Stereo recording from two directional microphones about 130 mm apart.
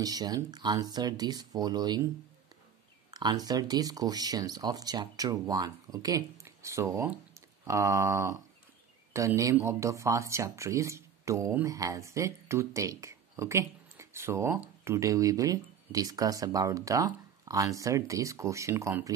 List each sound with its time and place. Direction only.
0.0 s speech: 30° right (ahead or behind)
3.1 s speech: 30° right (ahead or behind)